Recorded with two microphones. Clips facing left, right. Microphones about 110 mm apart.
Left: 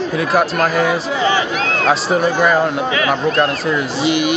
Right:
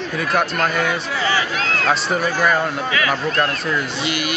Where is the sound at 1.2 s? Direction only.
20° left (ahead or behind).